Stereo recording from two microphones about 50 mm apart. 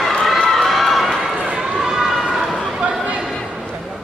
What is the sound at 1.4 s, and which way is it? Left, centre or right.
Run, right.